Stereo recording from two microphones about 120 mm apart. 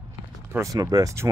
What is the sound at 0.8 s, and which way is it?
Speech, 25° right (ahead or behind).